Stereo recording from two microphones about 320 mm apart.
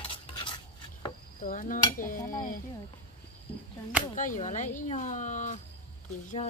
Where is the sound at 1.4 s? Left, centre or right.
Left.